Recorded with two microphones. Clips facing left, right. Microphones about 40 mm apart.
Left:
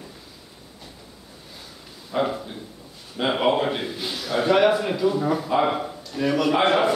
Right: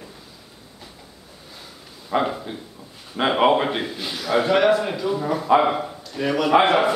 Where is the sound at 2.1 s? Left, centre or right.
Right.